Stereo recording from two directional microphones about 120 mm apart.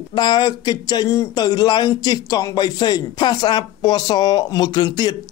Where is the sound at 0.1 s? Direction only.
35° left (ahead or behind).